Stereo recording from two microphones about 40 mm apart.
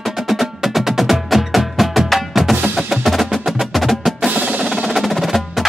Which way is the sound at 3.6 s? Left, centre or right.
Centre.